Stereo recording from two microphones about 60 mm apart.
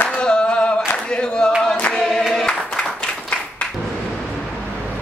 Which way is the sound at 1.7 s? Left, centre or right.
Centre.